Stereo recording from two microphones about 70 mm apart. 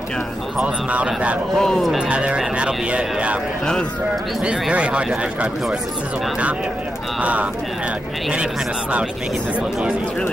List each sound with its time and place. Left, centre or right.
0.6 s speech: centre
1.6 s speech: centre
2.0 s speech: centre
4.4 s speech: centre
7.2 s speech: centre